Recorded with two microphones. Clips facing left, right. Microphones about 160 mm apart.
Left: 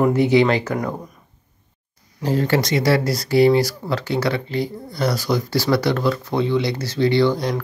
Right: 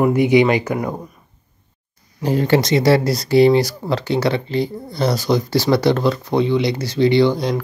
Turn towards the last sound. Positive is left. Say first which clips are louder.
# right 3 dB
turn(degrees=-15)  # may be behind; listen again after turning